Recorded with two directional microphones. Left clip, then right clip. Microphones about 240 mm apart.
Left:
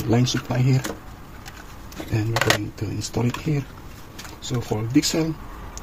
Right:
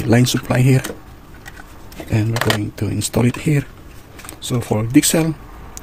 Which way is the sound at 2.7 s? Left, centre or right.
Right.